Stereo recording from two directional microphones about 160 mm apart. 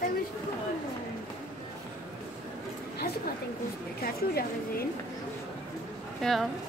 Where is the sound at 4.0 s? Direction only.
70° left (ahead or behind).